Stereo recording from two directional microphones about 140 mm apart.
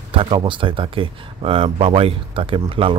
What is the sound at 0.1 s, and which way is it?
Speech, 40° right (ahead or behind).